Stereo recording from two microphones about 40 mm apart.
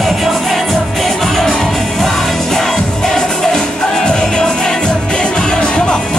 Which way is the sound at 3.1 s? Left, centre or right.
Centre.